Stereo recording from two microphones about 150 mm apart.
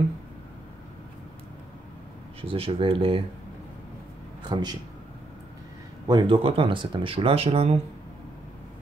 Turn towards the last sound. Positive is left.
turn(degrees=-40)  # may be behind; listen again after turning